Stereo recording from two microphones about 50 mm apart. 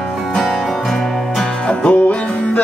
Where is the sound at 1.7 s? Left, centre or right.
Left.